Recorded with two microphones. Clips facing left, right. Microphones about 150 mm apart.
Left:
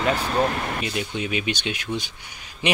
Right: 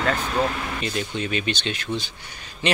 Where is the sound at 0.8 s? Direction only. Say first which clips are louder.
Even; 10° left (ahead or behind).